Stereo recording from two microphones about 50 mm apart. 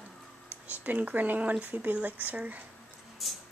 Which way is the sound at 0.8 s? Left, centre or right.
Right.